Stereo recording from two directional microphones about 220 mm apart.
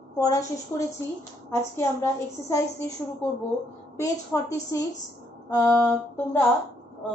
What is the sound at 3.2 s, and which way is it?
A woman's voice, 10° left (ahead or behind).